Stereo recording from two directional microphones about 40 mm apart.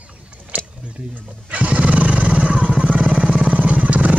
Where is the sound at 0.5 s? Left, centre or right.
Right.